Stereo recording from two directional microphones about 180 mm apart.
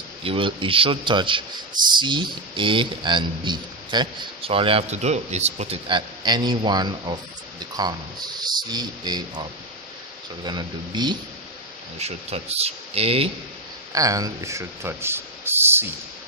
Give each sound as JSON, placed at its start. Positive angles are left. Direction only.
{"t": 0.2, "sound": "speech", "side_deg": -30}
{"t": 12.0, "sound": "speech", "side_deg": -35}
{"t": 13.9, "sound": "speech", "side_deg": -20}